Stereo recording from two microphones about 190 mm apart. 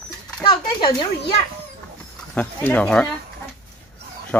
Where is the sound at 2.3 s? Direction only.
10° left (ahead or behind).